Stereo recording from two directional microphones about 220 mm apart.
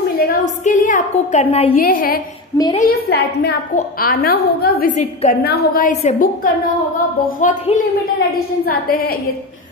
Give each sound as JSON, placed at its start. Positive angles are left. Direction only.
{"t": 0.2, "sound": "a sound", "side_deg": 40}
{"t": 1.8, "sound": "a woman's voice", "side_deg": 40}
{"t": 2.5, "sound": "a woman's voice", "side_deg": 20}
{"t": 2.9, "sound": "a woman's voice", "side_deg": 45}